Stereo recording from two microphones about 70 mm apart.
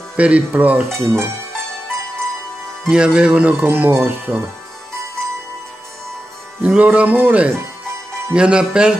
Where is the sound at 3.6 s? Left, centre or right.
Right.